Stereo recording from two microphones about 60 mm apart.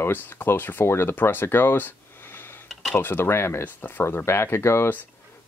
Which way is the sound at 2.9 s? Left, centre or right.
Left.